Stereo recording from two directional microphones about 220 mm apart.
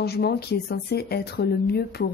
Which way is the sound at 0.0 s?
45° left (ahead or behind).